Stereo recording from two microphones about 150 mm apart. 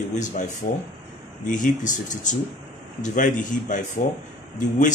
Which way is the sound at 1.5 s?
60° left (ahead or behind).